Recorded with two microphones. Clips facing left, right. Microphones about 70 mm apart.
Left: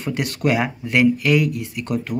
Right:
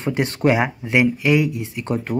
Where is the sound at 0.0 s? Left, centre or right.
Right.